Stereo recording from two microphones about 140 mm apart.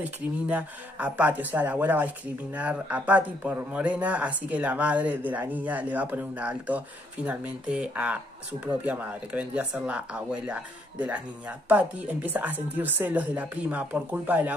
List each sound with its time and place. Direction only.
0.0 s speech: 10° right (ahead or behind)